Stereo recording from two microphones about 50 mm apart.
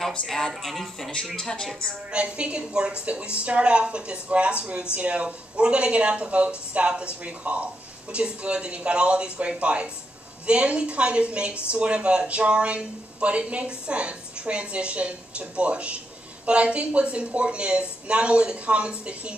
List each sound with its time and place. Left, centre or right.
0.3 s speech: centre
2.0 s speech: right